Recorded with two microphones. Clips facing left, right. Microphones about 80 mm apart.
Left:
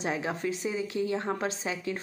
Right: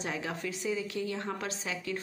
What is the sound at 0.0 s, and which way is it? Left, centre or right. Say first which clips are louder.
A woman's voice: left 5 dB; left.